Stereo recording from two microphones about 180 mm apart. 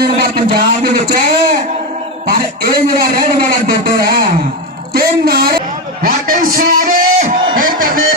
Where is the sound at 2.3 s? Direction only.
60° right (ahead or behind).